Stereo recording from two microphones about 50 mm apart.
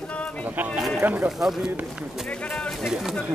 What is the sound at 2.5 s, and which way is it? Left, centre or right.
Speech, centre.